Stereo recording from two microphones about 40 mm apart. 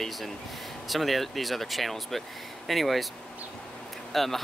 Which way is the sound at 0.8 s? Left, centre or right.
Centre.